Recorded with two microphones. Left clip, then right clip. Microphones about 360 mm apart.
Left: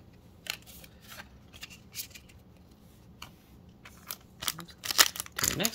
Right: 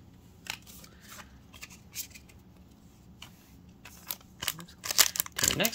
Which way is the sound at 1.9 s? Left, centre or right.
Left.